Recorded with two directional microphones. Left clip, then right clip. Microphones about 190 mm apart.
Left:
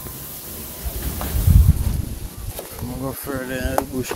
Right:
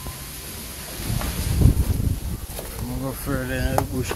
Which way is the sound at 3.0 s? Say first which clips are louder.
Left 1 dB; 20° left (ahead or behind).